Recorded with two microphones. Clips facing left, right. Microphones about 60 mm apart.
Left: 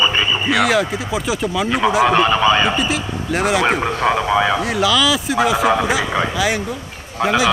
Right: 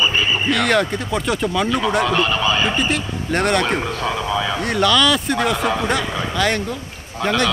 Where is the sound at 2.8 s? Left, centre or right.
Centre.